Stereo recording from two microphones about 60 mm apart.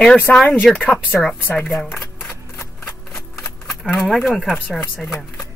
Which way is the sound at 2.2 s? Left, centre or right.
Left.